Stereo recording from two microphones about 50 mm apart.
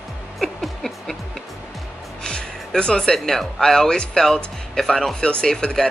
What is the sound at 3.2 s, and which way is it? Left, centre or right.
Speech, centre.